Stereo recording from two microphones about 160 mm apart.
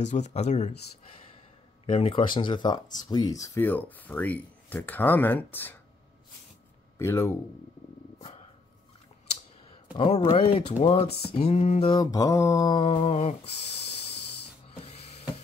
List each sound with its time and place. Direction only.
0.0 s speech: 45° left (ahead or behind)
1.9 s speech: 35° left (ahead or behind); by 5.8 s 10° left (ahead or behind)
7.0 s speech: 15° left (ahead or behind)
9.9 s speech: 40° left (ahead or behind)
11.9 s mantra: 25° left (ahead or behind); by 13.4 s 40° left (ahead or behind)